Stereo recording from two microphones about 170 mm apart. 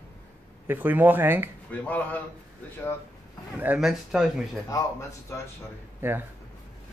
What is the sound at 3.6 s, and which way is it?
Speech, 5° right (ahead or behind).